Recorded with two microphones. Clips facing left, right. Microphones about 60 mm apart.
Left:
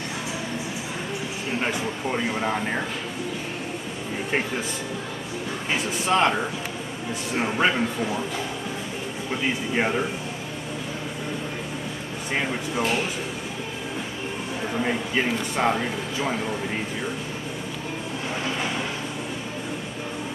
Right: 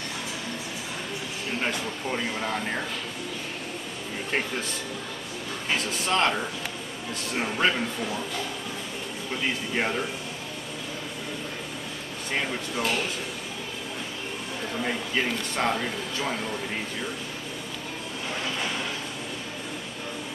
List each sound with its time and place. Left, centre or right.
1.6 s speech: centre
4.3 s speech: centre
5.7 s speech: centre
9.3 s speech: centre
12.4 s speech: centre
14.7 s speech: centre